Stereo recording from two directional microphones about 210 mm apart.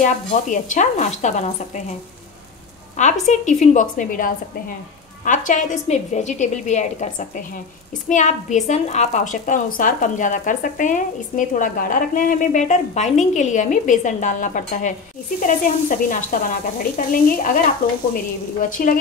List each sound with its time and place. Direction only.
0.0 s a woman's voice: 35° left (ahead or behind)
3.0 s a woman's voice: 35° left (ahead or behind)